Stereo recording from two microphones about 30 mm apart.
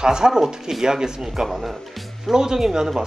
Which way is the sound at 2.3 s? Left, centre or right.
Centre.